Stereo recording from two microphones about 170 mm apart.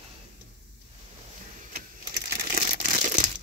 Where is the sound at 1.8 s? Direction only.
60° right (ahead or behind).